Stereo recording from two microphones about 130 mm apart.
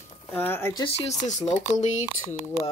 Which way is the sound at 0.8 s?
55° left (ahead or behind).